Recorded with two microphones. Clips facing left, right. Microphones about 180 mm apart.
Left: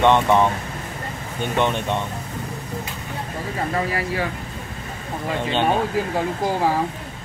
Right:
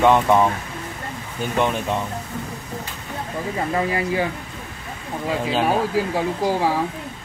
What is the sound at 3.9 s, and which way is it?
Speech, 20° right (ahead or behind).